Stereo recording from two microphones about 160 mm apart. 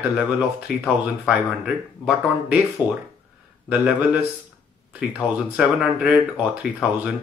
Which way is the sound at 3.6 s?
5° right (ahead or behind).